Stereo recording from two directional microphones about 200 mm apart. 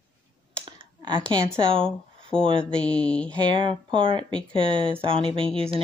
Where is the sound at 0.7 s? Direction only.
25° right (ahead or behind).